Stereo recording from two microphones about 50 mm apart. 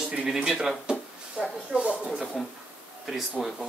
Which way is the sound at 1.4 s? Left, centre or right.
Right.